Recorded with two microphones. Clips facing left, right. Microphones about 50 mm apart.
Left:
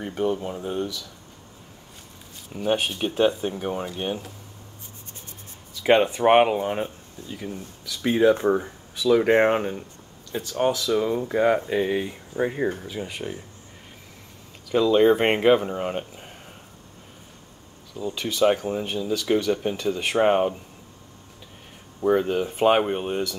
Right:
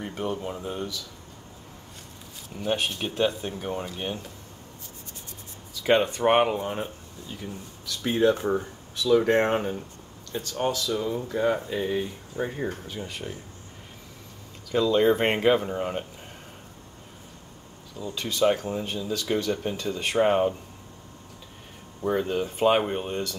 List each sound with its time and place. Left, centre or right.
0.0 s speech: centre
2.5 s speech: centre
5.8 s speech: centre
12.7 s speech: centre
13.0 s speech: centre
14.8 s speech: centre
17.9 s speech: centre
22.0 s speech: centre